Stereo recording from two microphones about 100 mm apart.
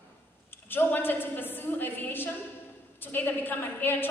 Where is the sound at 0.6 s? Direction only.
20° left (ahead or behind).